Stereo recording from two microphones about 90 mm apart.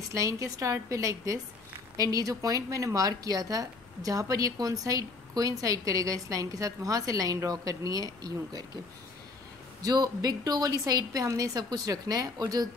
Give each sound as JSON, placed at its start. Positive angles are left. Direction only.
{"t": 0.1, "sound": "a woman's voice", "side_deg": -40}
{"t": 9.8, "sound": "a woman's voice", "side_deg": -45}